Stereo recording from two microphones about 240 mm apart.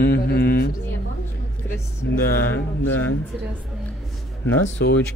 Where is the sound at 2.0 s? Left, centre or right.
Left.